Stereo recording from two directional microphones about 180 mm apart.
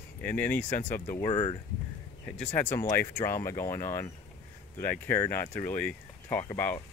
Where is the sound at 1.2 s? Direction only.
30° left (ahead or behind).